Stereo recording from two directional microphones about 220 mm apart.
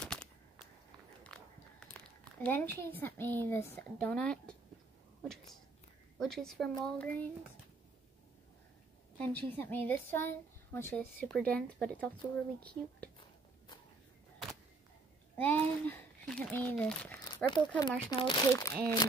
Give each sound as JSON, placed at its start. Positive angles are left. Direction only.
{"t": 0.0, "sound": "a sound", "side_deg": 5}
{"t": 2.0, "sound": "a woman's voice", "side_deg": 5}
{"t": 9.2, "sound": "speech", "side_deg": 5}
{"t": 15.3, "sound": "speech", "side_deg": 10}
{"t": 17.5, "sound": "speech", "side_deg": 20}